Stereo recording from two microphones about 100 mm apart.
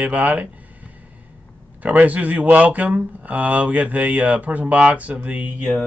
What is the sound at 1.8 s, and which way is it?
Speech, 15° right (ahead or behind).